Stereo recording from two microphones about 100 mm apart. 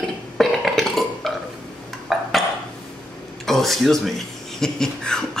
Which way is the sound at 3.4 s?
Centre (ahead or behind).